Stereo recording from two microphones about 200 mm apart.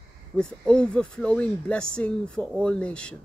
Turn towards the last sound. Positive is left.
turn(degrees=5)  # may be behind; listen again after turning